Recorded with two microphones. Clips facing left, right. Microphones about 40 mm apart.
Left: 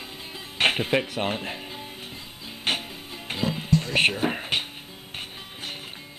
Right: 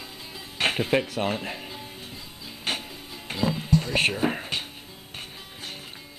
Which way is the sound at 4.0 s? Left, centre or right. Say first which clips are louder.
Left 2 dB; centre.